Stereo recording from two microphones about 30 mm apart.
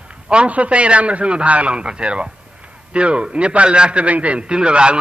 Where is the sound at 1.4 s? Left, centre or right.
Right.